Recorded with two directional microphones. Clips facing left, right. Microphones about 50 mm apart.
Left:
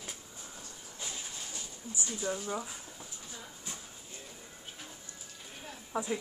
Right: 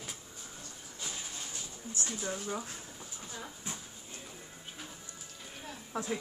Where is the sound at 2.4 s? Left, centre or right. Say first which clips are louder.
Left 1 dB; centre.